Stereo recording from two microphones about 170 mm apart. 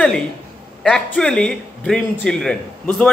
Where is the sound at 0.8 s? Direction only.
5° left (ahead or behind).